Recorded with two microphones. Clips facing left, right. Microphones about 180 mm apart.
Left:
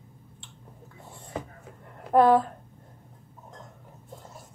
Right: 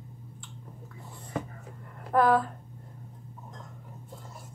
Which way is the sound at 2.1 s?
25° left (ahead or behind).